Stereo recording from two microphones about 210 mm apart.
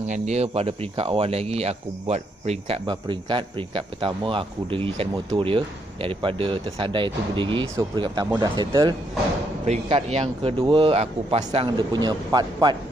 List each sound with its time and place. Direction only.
0.0 s speech: 30° right (ahead or behind)